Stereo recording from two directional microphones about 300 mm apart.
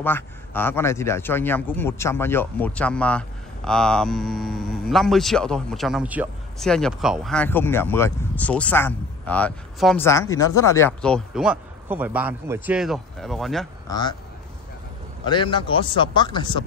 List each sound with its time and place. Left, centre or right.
0.0 s a man's voice: centre
13.8 s speech: centre
15.2 s speech: centre